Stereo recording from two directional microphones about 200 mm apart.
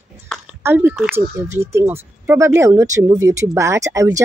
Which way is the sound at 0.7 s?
10° right (ahead or behind).